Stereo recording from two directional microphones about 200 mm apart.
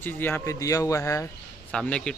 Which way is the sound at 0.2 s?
15° left (ahead or behind).